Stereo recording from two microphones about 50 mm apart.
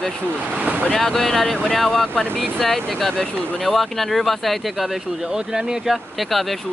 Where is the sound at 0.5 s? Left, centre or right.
Right.